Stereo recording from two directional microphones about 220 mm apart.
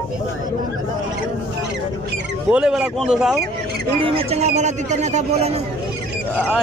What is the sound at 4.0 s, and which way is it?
Speech, 25° right (ahead or behind).